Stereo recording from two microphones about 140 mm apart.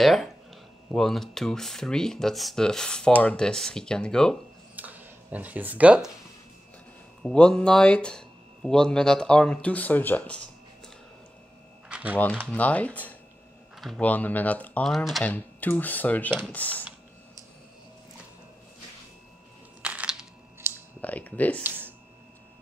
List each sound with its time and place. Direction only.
0.0 s speech: centre (ahead or behind)
4.7 s a sound: 10° right (ahead or behind)
7.2 s speech: 5° left (ahead or behind)
11.9 s typing: 10° right (ahead or behind)
12.4 s speech: 10° left (ahead or behind)
13.7 s speech: centre (ahead or behind)
14.0 s speech: 10° left (ahead or behind)
15.2 s speech: 10° left (ahead or behind)
19.8 s a sound: 10° right (ahead or behind)
20.6 s a sound: 15° right (ahead or behind)
21.0 s speech: 10° left (ahead or behind)
21.6 s a sound: 15° right (ahead or behind)